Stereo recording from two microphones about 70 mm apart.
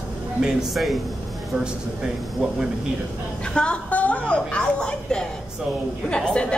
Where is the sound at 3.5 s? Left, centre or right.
Centre.